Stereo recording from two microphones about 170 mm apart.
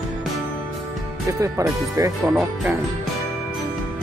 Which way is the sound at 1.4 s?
20° right (ahead or behind).